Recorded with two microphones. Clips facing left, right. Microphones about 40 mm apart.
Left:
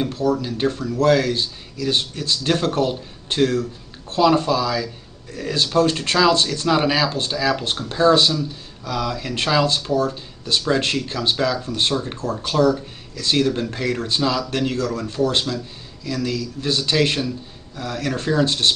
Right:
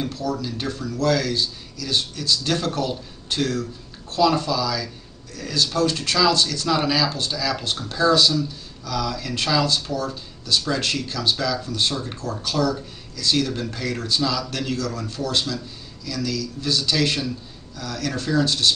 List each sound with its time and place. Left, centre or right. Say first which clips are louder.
0.0 s speech: left 5 dB; left